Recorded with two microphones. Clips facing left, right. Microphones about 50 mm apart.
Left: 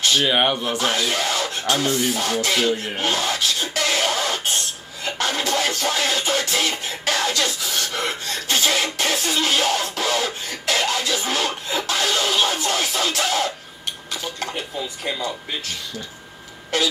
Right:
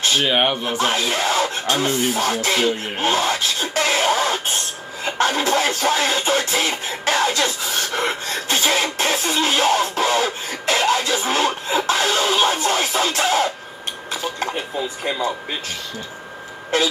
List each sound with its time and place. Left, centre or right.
0.0 s a sound: centre
0.3 s speech: centre
0.7 s music: right
3.7 s a sound: right
5.0 s music: right
14.8 s music: centre